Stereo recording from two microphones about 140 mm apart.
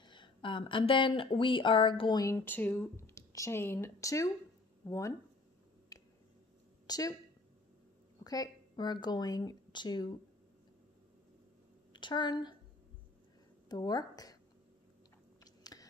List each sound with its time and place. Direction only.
0.0 s speech: 35° left (ahead or behind)
2.2 s speech: 15° left (ahead or behind)
6.9 s a woman's voice: 25° left (ahead or behind)
8.2 s speech: 30° left (ahead or behind)
11.9 s a woman's voice: 35° left (ahead or behind)
13.7 s speech: 30° left (ahead or behind)
15.4 s chewing: 25° left (ahead or behind)